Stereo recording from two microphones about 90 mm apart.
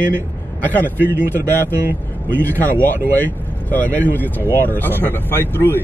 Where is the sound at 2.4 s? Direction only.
20° left (ahead or behind).